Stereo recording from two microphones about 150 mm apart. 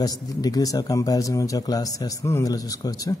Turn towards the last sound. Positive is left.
turn(degrees=25)  # may be behind; listen again after turning